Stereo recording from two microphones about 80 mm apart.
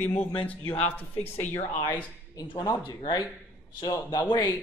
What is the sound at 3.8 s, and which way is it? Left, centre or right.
Speech, left.